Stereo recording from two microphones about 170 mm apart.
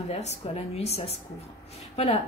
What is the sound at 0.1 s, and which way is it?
Speech, 40° left (ahead or behind).